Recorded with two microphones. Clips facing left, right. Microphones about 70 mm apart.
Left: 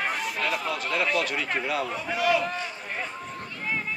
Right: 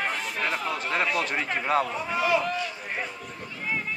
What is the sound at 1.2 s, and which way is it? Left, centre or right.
A man's voice, right.